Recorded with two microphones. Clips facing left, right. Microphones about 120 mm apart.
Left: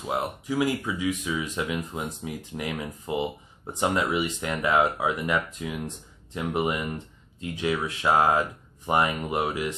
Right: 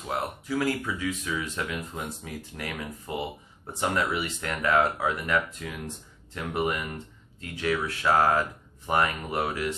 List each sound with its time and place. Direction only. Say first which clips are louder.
0.0 s speech: left 2 dB; 15° left (ahead or behind)